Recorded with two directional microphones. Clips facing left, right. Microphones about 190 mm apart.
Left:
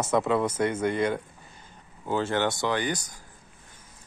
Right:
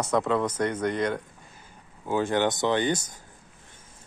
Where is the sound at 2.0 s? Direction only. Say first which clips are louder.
Right 2 dB; 15° right (ahead or behind).